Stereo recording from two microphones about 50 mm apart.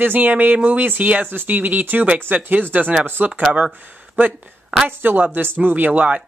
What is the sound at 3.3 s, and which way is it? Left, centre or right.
Speech, centre.